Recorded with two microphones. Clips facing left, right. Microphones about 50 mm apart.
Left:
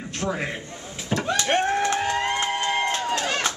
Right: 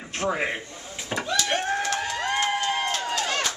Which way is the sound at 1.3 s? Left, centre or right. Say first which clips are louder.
Left 3 dB; left.